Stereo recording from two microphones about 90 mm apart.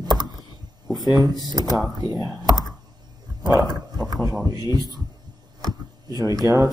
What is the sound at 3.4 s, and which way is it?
Wild animals, 50° right (ahead or behind).